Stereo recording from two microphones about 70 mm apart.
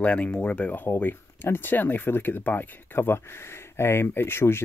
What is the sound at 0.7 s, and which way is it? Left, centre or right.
Speech, left.